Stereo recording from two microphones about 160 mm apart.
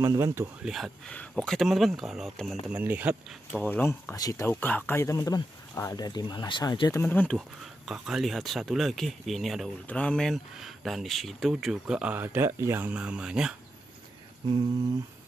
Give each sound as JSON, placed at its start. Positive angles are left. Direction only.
{"t": 0.0, "sound": "speech", "side_deg": -15}
{"t": 0.7, "sound": "speech", "side_deg": 0}
{"t": 2.7, "sound": "speech", "side_deg": -10}
{"t": 3.6, "sound": "speech", "side_deg": 10}
{"t": 7.0, "sound": "speech", "side_deg": 10}
{"t": 7.3, "sound": "speech", "side_deg": 0}